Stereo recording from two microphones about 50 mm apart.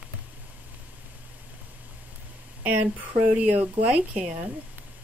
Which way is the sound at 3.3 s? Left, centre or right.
Right.